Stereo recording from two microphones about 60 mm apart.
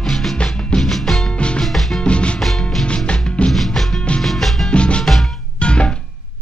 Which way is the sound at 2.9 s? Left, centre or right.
Centre.